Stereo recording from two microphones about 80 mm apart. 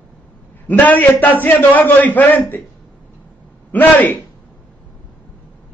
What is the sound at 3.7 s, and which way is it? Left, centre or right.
Speech, left.